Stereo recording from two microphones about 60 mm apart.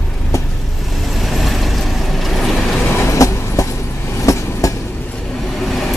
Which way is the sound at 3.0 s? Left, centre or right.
Left.